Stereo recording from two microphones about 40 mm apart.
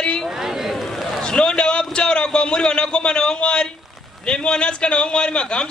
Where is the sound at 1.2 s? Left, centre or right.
Left.